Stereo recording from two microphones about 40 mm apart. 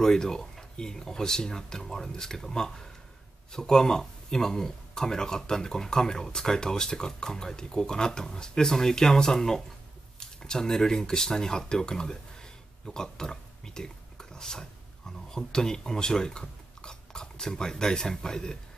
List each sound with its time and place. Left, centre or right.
0.0 s speech: centre